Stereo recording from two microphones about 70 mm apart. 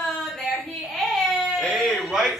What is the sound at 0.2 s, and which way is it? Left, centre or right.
Baby cry, centre.